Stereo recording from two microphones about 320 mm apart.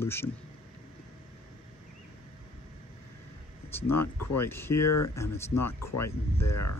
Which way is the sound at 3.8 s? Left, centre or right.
Left.